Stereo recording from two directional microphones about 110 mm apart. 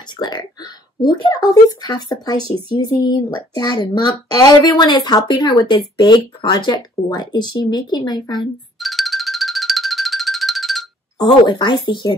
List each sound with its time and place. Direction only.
0.2 s speech: 40° left (ahead or behind)
8.7 s music: centre (ahead or behind)
11.1 s speech: 45° left (ahead or behind)